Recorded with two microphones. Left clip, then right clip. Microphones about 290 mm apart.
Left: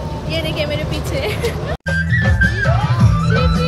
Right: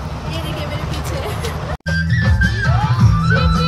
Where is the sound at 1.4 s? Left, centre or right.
Centre.